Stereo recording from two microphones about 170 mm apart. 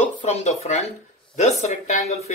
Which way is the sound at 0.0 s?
45° left (ahead or behind).